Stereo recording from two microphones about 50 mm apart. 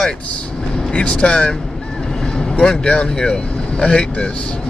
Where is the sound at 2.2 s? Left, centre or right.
Centre.